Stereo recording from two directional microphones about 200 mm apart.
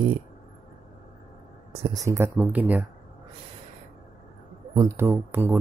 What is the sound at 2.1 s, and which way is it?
Speech, 15° right (ahead or behind).